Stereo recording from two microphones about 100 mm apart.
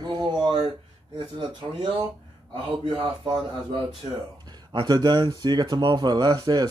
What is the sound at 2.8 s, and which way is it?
Speech, 50° right (ahead or behind).